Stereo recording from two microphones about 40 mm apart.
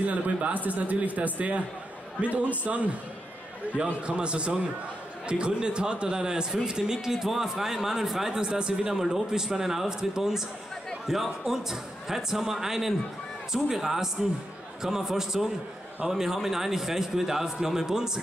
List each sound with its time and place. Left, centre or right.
0.0 s speech: right
2.6 s a man's voice: right; by 18.2 s centre